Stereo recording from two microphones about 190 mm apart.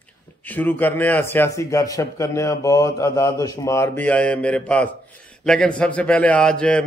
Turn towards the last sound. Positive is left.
turn(degrees=5)  # may be behind; listen again after turning